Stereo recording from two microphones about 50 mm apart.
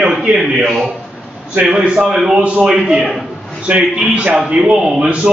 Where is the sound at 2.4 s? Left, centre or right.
Right.